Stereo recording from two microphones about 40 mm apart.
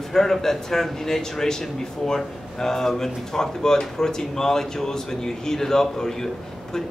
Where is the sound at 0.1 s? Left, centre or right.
Centre.